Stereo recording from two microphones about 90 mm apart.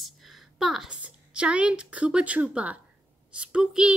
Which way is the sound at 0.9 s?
15° right (ahead or behind).